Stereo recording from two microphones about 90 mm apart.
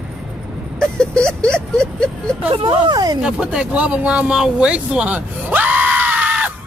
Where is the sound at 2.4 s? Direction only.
80° right; by 3.2 s 55° right (ahead or behind).